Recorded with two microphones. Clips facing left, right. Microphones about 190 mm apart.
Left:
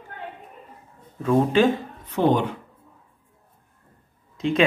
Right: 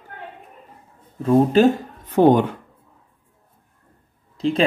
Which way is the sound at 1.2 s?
40° right (ahead or behind).